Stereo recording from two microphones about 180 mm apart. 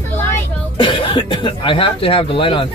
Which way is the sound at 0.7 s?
30° left (ahead or behind).